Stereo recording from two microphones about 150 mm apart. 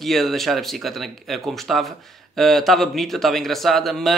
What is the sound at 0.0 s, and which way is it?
Speech, centre (ahead or behind).